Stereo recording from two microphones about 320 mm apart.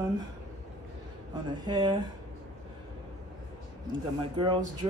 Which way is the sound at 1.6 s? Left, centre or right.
Centre.